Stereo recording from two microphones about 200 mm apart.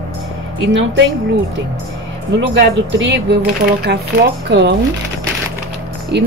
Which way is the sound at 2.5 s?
65° right (ahead or behind).